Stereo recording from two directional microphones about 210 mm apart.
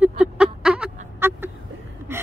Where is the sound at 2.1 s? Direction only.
10° right (ahead or behind).